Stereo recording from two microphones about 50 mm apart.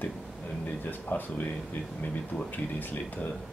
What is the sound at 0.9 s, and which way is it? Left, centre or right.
Speech, left.